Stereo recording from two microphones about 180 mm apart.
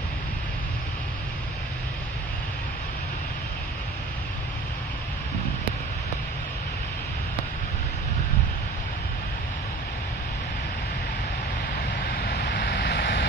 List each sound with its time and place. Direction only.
12.1 s vehicle: 70° left (ahead or behind)